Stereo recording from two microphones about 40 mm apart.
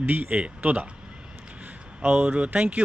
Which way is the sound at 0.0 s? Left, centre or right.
Right.